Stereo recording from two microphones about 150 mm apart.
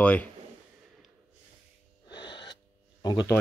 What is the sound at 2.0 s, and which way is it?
Gasp, 30° left (ahead or behind).